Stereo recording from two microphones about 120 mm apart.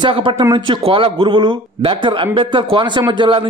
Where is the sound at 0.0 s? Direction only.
45° right (ahead or behind).